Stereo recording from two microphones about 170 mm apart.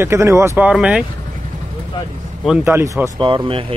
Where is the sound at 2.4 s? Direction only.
10° right (ahead or behind).